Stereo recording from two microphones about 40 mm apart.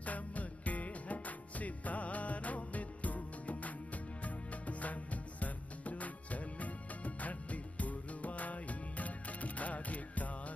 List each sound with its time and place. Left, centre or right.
0.0 s music: left